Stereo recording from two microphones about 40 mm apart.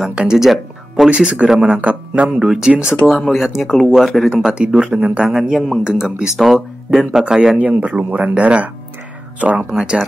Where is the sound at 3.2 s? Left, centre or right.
Centre.